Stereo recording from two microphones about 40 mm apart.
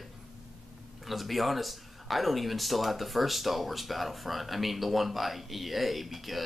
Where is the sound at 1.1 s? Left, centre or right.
Centre.